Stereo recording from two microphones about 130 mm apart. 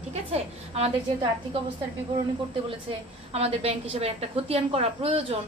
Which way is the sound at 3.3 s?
50° right (ahead or behind).